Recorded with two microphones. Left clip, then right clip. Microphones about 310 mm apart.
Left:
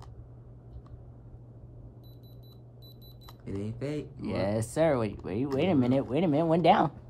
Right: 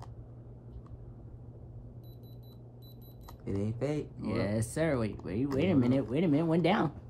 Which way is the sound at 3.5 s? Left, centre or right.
Centre.